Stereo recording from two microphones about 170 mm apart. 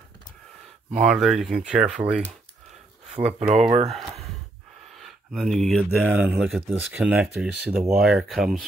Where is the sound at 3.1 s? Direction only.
40° right (ahead or behind).